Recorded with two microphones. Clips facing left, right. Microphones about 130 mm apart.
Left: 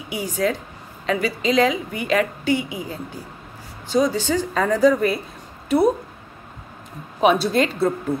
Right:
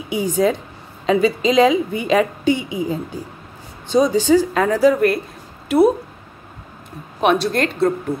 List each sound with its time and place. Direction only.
0.1 s a woman's voice: 20° right (ahead or behind); by 5.9 s centre (ahead or behind)
7.2 s a woman's voice: centre (ahead or behind)